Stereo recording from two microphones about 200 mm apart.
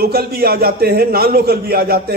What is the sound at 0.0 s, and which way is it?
Speech, 50° right (ahead or behind).